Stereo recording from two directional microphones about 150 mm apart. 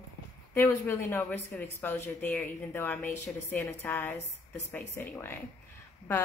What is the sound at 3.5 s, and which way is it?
A woman's voice, 15° left (ahead or behind).